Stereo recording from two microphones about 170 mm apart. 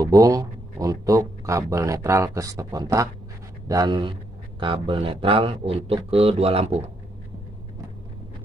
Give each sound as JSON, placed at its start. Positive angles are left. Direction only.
{"t": 0.0, "sound": "speech", "side_deg": -20}